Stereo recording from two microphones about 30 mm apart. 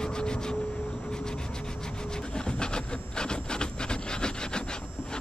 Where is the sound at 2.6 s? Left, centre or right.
Left.